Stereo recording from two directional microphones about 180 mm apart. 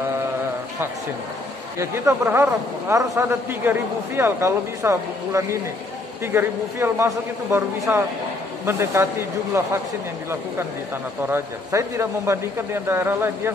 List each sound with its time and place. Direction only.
1.8 s speech: 15° right (ahead or behind)
11.2 s speech: 15° right (ahead or behind)